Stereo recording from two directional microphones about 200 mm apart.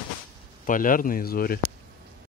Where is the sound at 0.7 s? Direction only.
45° left (ahead or behind).